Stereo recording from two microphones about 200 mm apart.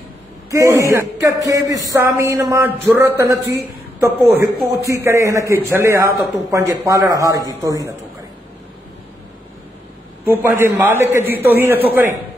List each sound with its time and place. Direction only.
0.5 s speech: 15° right (ahead or behind)
10.2 s speech: 10° right (ahead or behind)